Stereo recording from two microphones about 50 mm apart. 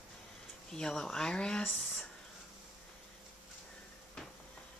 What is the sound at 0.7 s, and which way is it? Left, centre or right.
Speech, centre.